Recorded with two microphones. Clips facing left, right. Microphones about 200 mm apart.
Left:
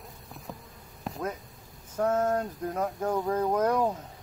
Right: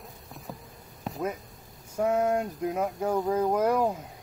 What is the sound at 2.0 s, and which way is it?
Speech, 10° right (ahead or behind).